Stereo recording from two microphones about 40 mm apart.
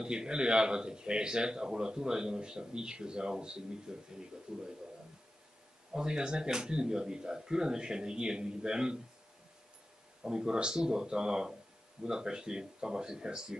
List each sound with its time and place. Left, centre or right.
0.0 s speech: right
5.9 s speech: centre
10.2 s speech: centre